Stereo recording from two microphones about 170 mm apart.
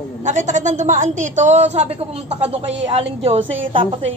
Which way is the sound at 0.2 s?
45° right (ahead or behind).